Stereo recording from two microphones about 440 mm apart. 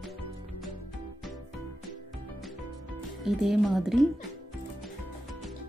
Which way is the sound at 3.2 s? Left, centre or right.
Centre.